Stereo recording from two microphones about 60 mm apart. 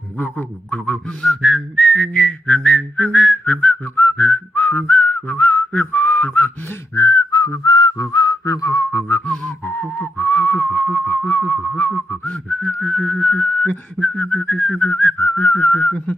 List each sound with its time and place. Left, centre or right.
0.2 s a man's voice: left
1.2 s whistling: centre; by 6.5 s left
7.0 s whistling: left
9.7 s a sound: left
11.9 s whistling: left